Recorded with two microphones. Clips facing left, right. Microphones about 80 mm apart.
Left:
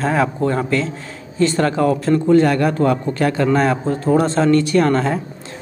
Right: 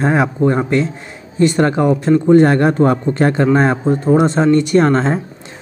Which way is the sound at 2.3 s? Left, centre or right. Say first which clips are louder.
Right 4 dB; right.